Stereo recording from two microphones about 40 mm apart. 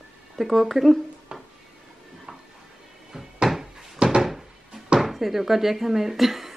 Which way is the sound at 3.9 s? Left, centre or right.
Right.